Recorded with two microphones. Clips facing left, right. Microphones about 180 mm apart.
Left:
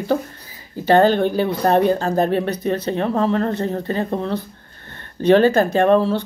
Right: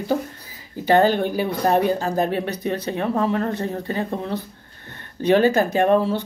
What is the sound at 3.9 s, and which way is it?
Speech, 35° left (ahead or behind).